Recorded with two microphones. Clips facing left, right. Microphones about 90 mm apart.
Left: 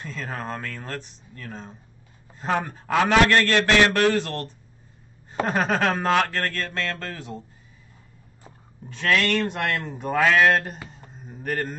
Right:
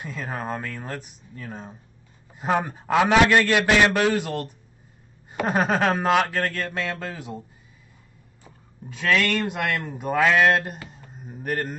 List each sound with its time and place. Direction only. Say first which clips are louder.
0.0 s a man's voice: right 1 dB; 10° right (ahead or behind)
8.8 s a man's voice: even; 5° right (ahead or behind)
11.1 s a sound: even; 5° right (ahead or behind)